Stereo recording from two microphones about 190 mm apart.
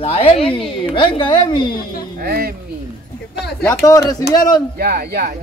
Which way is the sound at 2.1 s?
50° right (ahead or behind).